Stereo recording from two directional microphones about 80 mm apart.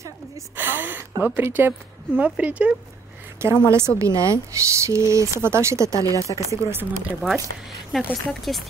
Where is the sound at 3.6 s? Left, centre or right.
Right.